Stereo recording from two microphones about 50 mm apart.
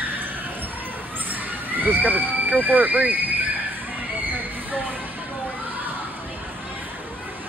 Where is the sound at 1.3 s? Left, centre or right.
Right.